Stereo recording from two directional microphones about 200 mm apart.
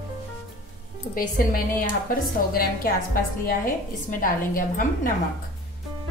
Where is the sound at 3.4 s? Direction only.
45° left (ahead or behind).